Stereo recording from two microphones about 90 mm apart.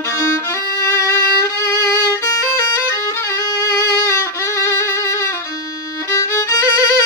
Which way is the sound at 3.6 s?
35° left (ahead or behind).